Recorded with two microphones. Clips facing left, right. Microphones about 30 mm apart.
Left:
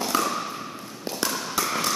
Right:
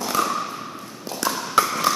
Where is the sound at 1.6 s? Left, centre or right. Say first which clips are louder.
Right 9 dB; right.